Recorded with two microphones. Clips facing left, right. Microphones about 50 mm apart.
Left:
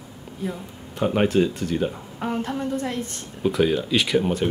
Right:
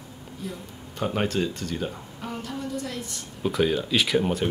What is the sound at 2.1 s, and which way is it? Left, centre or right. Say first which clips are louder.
A woman's voice: left 7 dB; left.